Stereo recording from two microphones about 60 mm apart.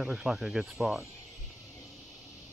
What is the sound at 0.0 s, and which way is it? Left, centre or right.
Speech, centre.